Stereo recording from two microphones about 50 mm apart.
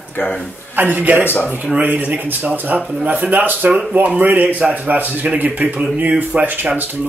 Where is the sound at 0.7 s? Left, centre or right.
Right.